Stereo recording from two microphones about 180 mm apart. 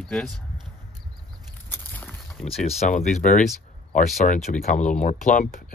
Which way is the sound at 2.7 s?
40° left (ahead or behind).